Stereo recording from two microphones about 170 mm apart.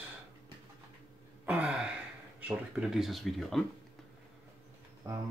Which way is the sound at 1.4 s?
5° right (ahead or behind).